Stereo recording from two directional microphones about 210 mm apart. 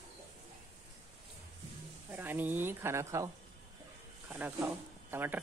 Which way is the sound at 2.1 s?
10° right (ahead or behind).